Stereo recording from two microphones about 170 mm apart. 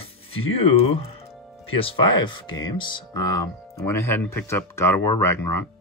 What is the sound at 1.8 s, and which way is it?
Speech, 30° left (ahead or behind).